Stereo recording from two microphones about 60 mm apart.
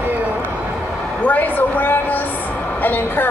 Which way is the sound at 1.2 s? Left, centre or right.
Left.